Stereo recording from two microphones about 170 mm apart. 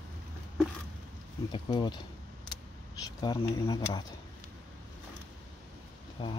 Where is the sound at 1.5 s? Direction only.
25° left (ahead or behind).